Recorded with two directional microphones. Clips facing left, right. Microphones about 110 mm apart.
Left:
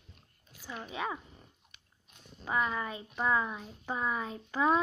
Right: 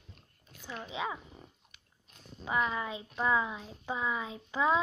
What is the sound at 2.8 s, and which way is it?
Speech, 15° right (ahead or behind).